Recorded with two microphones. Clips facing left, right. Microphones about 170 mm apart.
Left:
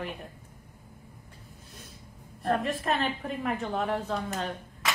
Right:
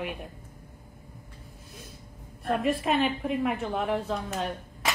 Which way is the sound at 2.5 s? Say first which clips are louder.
Right 4 dB; 5° right (ahead or behind).